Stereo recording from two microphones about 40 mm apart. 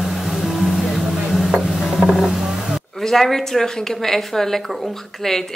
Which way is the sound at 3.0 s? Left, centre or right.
Centre.